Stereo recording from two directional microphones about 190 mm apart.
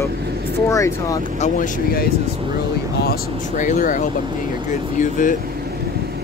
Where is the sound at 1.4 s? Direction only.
45° left (ahead or behind).